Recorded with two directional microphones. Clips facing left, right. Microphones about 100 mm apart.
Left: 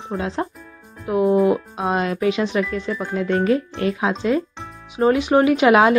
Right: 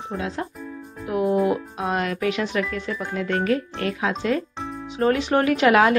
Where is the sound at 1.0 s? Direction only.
25° left (ahead or behind).